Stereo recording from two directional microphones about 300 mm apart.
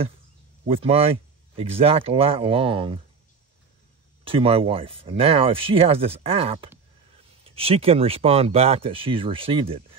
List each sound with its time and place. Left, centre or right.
0.7 s speech: centre
4.2 s speech: centre